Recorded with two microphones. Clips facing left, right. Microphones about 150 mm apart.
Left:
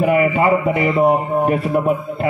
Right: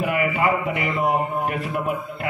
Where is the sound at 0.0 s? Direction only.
30° left (ahead or behind).